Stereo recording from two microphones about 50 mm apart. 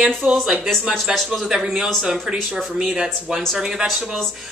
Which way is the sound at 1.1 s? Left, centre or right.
Centre.